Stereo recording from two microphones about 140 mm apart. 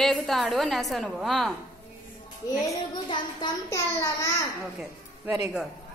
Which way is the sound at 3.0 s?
25° left (ahead or behind).